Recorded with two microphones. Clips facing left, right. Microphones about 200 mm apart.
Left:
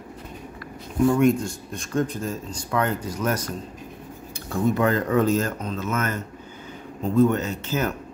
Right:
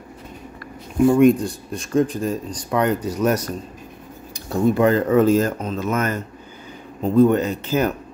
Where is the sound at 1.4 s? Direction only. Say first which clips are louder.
Right 4 dB; 35° right (ahead or behind).